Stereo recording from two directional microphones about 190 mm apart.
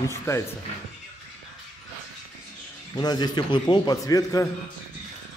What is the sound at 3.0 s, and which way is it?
A man's voice, 20° left (ahead or behind).